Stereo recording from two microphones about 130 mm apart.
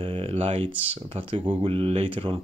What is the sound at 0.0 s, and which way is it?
Speech, 45° right (ahead or behind).